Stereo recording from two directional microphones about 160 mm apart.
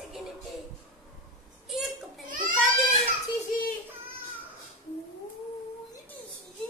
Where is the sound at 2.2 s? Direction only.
55° right (ahead or behind).